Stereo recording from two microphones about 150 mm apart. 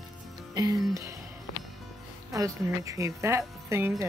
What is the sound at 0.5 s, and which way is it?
Speech, 25° right (ahead or behind).